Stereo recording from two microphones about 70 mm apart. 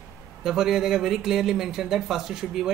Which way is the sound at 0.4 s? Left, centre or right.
Centre.